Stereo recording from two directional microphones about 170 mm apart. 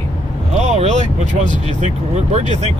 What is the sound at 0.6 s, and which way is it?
Speech, 40° right (ahead or behind).